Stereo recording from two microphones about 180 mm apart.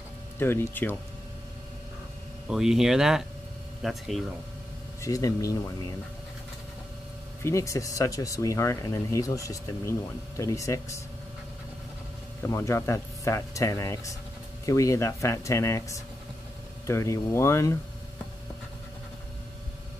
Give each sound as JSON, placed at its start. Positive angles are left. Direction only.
{"t": 0.4, "sound": "speech", "side_deg": 10}
{"t": 2.5, "sound": "speech", "side_deg": 0}
{"t": 5.0, "sound": "speech", "side_deg": 20}
{"t": 7.4, "sound": "speech", "side_deg": 15}
{"t": 12.4, "sound": "speech", "side_deg": 15}